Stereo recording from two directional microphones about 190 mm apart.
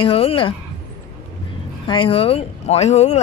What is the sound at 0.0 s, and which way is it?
Speech, 30° left (ahead or behind).